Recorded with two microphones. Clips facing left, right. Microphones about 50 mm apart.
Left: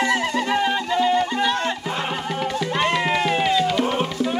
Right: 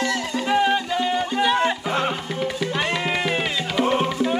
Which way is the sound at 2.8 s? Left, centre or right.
Centre.